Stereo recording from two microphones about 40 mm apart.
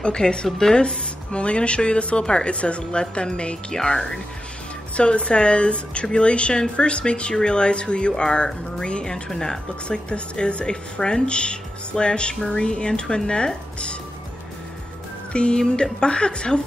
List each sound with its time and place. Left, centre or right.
0.0 s speech: left
3.8 s speech: centre
4.9 s speech: left
9.8 s speech: left
15.3 s speech: left